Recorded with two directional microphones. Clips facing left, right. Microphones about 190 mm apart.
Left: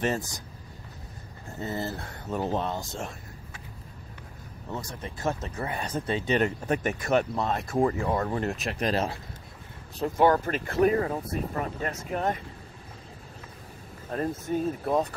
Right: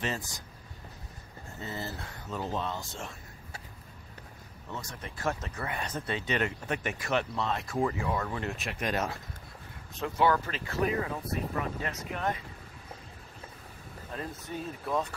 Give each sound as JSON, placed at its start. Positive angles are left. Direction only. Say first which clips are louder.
{"t": 1.6, "sound": "speech", "louder": "left 6 dB", "side_deg": 45}
{"t": 4.6, "sound": "speech", "louder": "left 5 dB", "side_deg": 35}
{"t": 9.9, "sound": "speech", "louder": "left 5 dB", "side_deg": 40}
{"t": 14.1, "sound": "speech", "louder": "left 10 dB", "side_deg": 50}